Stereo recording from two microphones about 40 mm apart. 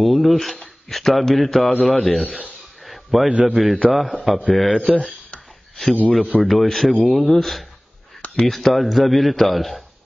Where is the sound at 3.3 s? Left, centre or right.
Right.